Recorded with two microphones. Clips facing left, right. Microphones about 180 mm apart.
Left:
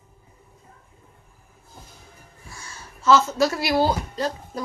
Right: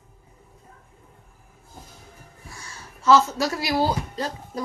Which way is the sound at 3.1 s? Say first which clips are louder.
Even; 25° left (ahead or behind).